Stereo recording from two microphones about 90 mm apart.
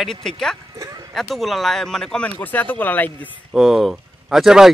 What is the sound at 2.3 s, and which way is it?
Speech, 20° left (ahead or behind).